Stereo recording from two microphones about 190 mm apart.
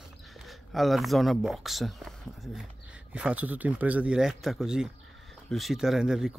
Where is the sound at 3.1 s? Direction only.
5° right (ahead or behind).